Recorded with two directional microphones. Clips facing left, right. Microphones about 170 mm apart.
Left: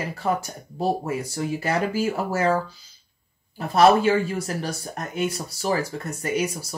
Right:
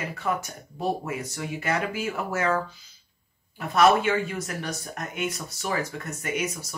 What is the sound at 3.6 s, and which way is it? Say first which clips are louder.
Speech: left 3 dB; 30° left (ahead or behind).